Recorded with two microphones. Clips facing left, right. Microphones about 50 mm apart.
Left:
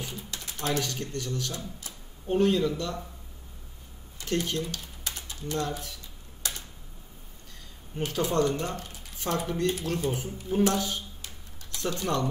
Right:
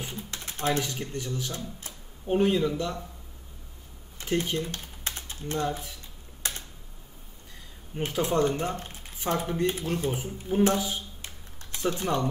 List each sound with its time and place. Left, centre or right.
0.0 s typing: right
2.2 s speech: centre
4.2 s typing: centre
5.6 s speech: centre
6.4 s typing: right
8.2 s speech: right